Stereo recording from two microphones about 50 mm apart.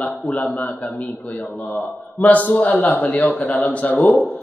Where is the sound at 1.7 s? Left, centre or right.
Left.